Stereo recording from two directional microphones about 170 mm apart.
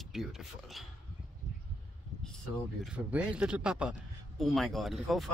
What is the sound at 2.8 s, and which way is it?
A man's voice, 5° right (ahead or behind).